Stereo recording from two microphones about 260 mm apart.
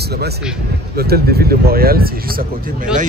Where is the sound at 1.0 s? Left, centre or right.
Right.